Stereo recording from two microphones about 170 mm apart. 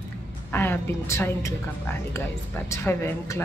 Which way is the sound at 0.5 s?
10° left (ahead or behind).